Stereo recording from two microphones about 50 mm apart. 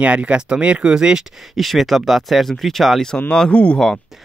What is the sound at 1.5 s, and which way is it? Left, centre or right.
Speech, centre.